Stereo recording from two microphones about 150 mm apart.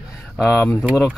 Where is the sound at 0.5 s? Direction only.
10° left (ahead or behind).